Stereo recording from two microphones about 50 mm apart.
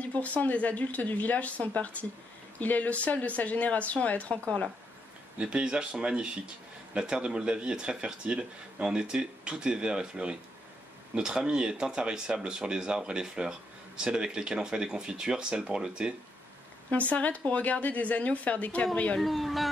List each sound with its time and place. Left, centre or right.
0.0 s a sound: left
0.4 s speech: left
5.4 s speech: centre
17.1 s speech: left
19.1 s speech: centre